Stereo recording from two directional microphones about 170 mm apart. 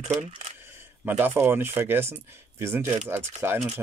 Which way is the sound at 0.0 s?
40° right (ahead or behind).